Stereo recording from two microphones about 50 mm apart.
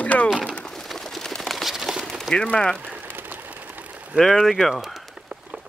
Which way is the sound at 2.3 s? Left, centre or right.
Centre.